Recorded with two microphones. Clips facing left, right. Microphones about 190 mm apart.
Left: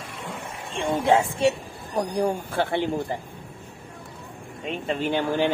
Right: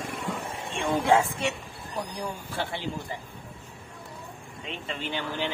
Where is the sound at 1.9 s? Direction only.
50° left (ahead or behind).